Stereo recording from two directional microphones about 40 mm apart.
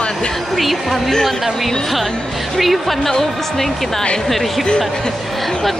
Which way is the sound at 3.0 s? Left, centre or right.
Centre.